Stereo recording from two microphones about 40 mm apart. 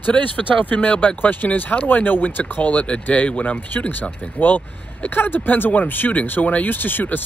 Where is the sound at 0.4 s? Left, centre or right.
Left.